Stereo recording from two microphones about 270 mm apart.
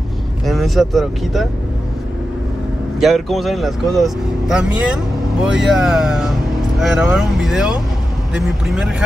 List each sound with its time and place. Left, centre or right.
0.5 s speech: centre
3.0 s speech: centre